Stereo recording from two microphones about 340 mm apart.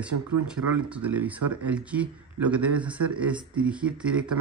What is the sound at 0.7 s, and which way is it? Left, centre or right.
Speech, centre.